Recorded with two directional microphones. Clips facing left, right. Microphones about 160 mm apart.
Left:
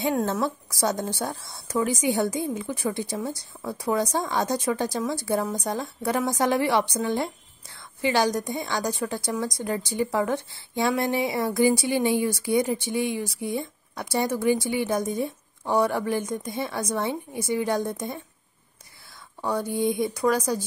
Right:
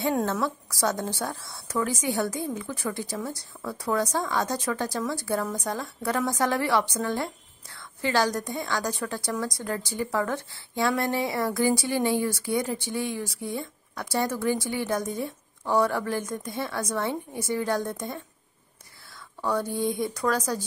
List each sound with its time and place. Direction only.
0.2 s a woman's voice: 15° left (ahead or behind)
19.4 s a woman's voice: 15° left (ahead or behind)